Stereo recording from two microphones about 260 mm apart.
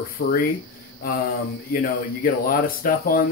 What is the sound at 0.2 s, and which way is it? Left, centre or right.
Speech, left.